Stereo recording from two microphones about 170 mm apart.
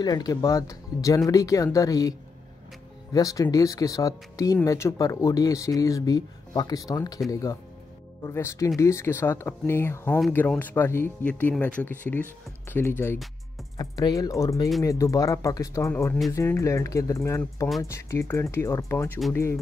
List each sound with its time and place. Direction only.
0.0 s speech: 20° left (ahead or behind)